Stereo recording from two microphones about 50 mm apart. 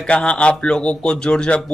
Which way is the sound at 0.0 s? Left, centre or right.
Left.